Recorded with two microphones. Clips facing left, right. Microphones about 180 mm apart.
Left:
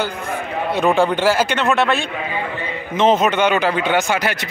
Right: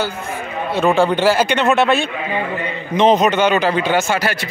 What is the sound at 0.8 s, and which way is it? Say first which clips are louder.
Speech: right 2 dB; centre (ahead or behind).